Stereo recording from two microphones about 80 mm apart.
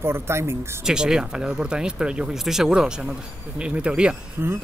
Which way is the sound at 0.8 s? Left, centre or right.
Centre.